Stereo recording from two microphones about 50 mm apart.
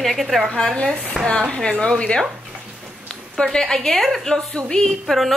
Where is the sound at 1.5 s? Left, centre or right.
Centre.